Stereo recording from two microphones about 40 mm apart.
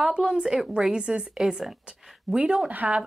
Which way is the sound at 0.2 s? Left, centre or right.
Centre.